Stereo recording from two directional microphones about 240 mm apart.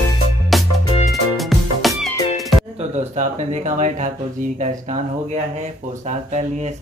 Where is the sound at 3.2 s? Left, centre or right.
Right.